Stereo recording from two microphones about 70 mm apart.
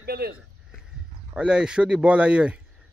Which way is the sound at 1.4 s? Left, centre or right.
Centre.